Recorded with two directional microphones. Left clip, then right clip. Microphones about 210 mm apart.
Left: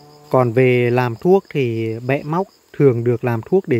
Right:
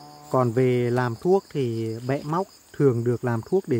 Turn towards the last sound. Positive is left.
turn(degrees=20)  # may be behind; listen again after turning